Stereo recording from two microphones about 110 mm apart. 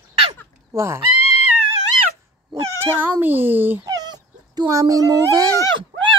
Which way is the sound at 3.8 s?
35° right (ahead or behind).